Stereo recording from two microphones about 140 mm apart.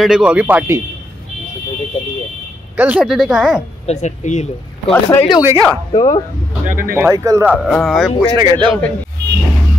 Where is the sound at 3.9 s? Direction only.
55° left (ahead or behind).